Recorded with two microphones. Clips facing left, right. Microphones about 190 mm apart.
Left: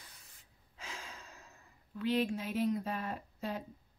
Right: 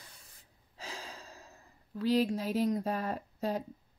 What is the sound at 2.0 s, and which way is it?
Speech, 35° right (ahead or behind).